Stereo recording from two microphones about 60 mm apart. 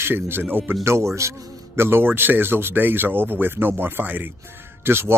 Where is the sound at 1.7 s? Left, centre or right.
Right.